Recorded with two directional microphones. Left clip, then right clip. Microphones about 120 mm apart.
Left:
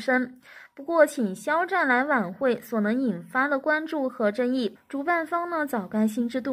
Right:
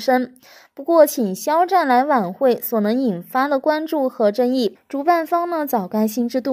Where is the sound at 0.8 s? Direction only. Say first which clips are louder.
Right 7 dB; 55° right (ahead or behind).